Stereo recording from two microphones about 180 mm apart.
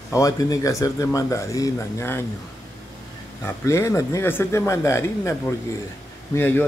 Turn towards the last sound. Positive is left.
turn(degrees=10)  # may be behind; listen again after turning